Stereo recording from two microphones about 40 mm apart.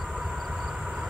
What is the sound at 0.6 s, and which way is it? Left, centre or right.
Train, centre.